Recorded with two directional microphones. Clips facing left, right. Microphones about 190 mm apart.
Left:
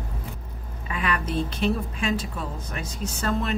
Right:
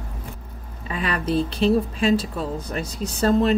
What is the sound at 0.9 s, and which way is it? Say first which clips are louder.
Speech: right 4 dB; 30° right (ahead or behind).